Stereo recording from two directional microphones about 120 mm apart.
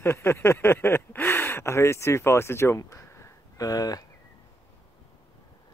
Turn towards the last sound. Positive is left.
turn(degrees=30)  # may be behind; listen again after turning